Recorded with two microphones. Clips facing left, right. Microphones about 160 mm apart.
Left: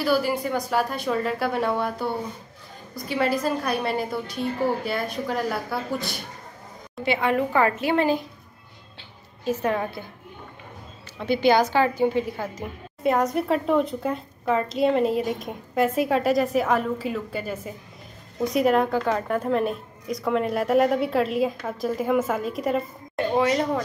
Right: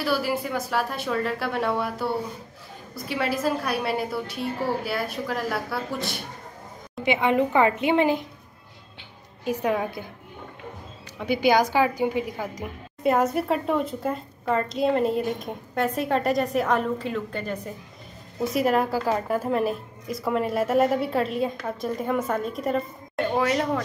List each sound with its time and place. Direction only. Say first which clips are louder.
0.0 s a woman's voice: left 3 dB; centre (ahead or behind)
7.1 s a woman's voice: right 1 dB; 20° right (ahead or behind)
9.4 s a woman's voice: even; 15° right (ahead or behind)
11.1 s a woman's voice: left 1 dB; 10° right (ahead or behind)